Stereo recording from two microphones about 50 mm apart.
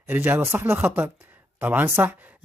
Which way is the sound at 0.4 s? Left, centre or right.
Right.